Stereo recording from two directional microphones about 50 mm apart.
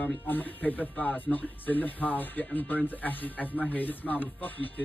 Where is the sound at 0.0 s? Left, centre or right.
Left.